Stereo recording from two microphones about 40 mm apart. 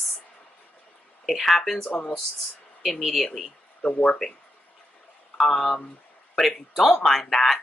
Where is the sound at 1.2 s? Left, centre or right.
Centre.